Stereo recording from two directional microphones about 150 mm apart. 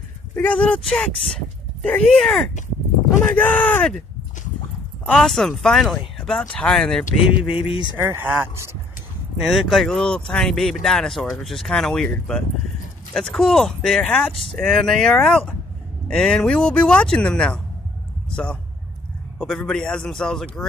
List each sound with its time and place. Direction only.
0.4 s speech: 10° left (ahead or behind)
5.0 s speech: 5° left (ahead or behind)
7.6 s speech: 35° left (ahead or behind)
8.0 s speech: 15° right (ahead or behind)
9.4 s a man's voice: centre (ahead or behind)